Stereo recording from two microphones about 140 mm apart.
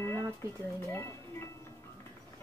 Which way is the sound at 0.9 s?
20° left (ahead or behind).